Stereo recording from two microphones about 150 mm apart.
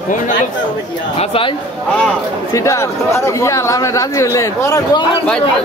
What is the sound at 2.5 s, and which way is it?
Speech, 20° left (ahead or behind).